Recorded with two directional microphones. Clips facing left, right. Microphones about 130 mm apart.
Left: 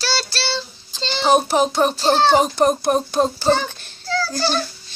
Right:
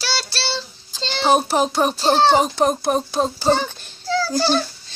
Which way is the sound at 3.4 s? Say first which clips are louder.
Even; 10° right (ahead or behind).